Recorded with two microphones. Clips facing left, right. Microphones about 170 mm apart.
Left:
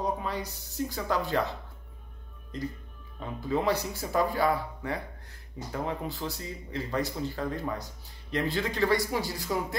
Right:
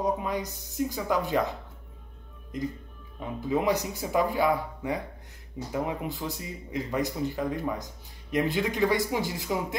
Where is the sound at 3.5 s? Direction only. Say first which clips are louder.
Right 2 dB; 20° right (ahead or behind).